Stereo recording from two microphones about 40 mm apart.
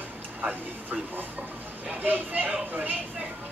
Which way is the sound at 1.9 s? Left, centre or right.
Right.